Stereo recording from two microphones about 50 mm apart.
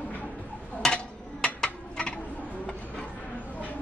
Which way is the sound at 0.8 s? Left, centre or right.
Centre.